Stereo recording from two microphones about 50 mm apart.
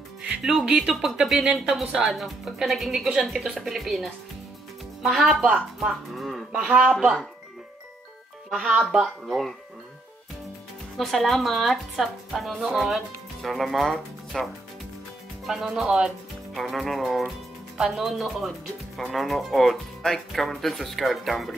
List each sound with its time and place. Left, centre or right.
0.2 s music: centre
0.8 s a woman's voice: centre
3.1 s speech: centre
5.1 s a woman's voice: centre
6.5 s a man's voice: centre
8.5 s speech: centre
11.0 s a woman's voice: centre
15.4 s a woman's voice: centre